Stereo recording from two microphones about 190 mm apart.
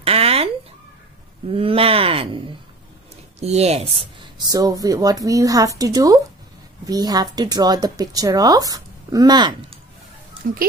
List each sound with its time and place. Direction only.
0.0 s a sound: 30° right (ahead or behind)
1.5 s speech: 30° right (ahead or behind)
4.2 s speech: 20° right (ahead or behind)